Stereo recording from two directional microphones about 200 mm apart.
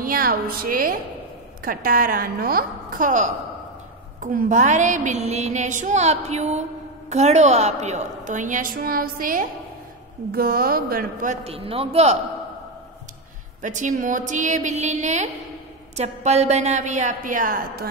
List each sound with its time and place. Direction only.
0.0 s a woman's voice: 45° right (ahead or behind)
11.4 s a man's voice: 30° right (ahead or behind)
13.6 s a woman's voice: 40° right (ahead or behind)